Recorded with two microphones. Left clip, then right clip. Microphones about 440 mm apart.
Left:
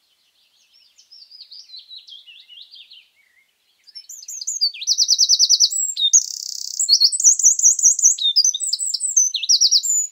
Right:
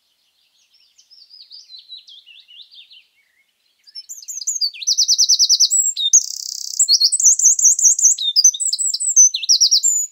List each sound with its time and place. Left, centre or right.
4.0 s chirp: right